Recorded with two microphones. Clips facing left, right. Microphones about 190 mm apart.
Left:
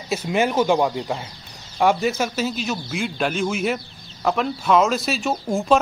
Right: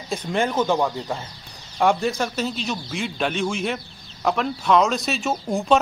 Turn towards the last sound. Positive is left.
turn(degrees=0)  # may be behind; listen again after turning